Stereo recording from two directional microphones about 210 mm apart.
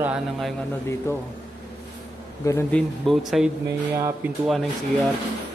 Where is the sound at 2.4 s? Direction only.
10° left (ahead or behind).